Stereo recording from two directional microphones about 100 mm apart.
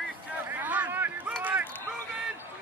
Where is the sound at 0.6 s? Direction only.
15° right (ahead or behind).